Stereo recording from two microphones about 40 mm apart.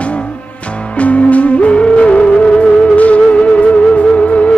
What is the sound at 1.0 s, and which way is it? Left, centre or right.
Music, left.